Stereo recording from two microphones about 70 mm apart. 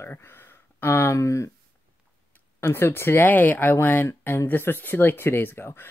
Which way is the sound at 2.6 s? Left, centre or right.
Left.